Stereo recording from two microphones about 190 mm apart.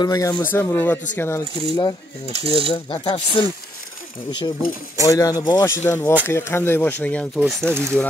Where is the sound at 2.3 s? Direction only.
30° right (ahead or behind).